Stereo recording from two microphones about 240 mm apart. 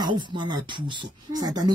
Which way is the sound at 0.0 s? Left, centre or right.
Centre.